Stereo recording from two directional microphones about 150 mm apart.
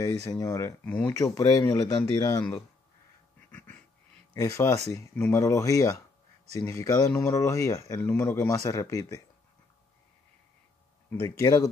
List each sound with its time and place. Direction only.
0.0 s speech: 25° left (ahead or behind)
0.8 s speech: 10° left (ahead or behind)
1.1 s speech: 20° left (ahead or behind)
3.5 s a sound: 10° left (ahead or behind)
4.3 s speech: 20° left (ahead or behind)
11.1 s speech: 20° left (ahead or behind)